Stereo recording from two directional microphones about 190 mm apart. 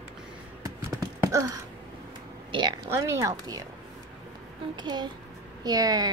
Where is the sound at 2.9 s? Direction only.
15° right (ahead or behind).